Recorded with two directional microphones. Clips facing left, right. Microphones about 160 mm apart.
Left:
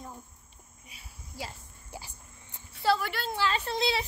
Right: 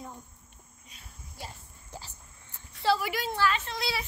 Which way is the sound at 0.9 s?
5° left (ahead or behind).